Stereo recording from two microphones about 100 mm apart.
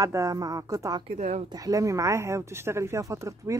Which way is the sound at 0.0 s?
35° right (ahead or behind).